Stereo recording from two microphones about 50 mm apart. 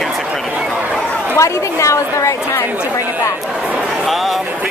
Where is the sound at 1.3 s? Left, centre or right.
Left.